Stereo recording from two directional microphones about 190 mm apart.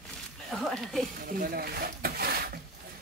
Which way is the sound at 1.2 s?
50° right (ahead or behind).